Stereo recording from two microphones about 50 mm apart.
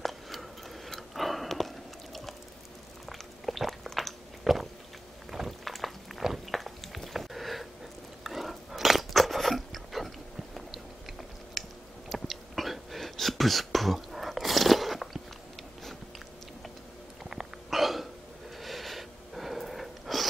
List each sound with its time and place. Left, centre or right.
0.0 s tick-tock: centre
3.1 s a sound: centre
8.2 s biting: centre
12.1 s whispering: centre
17.2 s hiccup: centre
18.6 s wheeze: centre